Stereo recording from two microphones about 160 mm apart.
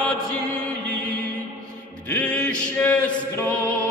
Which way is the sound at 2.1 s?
10° left (ahead or behind).